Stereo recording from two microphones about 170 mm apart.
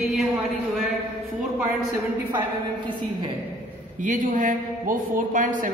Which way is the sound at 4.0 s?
50° right (ahead or behind).